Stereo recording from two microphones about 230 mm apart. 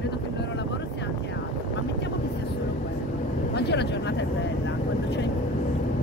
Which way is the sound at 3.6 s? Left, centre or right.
Left.